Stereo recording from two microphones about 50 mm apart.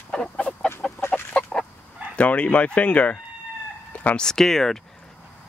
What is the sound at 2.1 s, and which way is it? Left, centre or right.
Speech, left.